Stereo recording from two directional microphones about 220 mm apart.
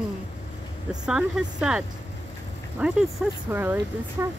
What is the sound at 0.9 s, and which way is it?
Speech, 5° right (ahead or behind).